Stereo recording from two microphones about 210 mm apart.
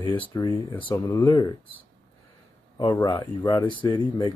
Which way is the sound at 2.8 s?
15° left (ahead or behind).